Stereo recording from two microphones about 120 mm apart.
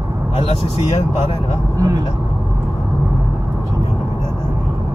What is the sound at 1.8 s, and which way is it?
Speech, 30° right (ahead or behind).